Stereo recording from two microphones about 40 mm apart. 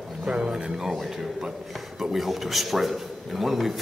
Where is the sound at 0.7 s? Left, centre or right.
Centre.